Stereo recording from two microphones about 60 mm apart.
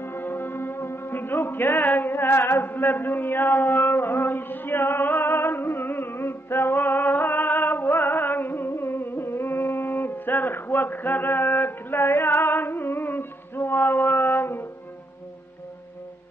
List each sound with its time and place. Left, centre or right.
0.0 s music: left